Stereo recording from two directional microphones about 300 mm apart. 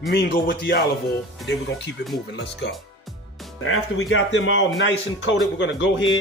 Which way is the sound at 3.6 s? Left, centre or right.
Left.